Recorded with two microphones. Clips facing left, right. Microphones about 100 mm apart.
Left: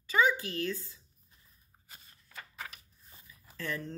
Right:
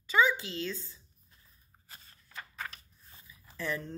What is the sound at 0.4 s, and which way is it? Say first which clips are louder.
Mantra: left 2 dB; 20° right (ahead or behind).